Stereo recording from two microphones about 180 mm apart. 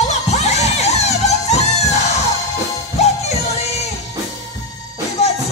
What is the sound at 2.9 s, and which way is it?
Music, 35° left (ahead or behind).